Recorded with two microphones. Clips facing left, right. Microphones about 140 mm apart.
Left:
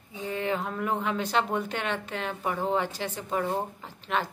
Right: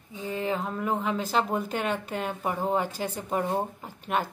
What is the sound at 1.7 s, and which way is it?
Speech, 40° right (ahead or behind).